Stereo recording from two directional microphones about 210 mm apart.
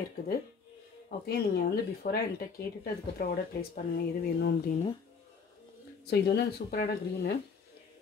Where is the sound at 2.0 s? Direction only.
40° left (ahead or behind).